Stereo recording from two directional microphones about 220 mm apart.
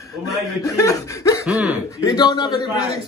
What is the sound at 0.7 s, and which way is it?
Speech, 15° left (ahead or behind).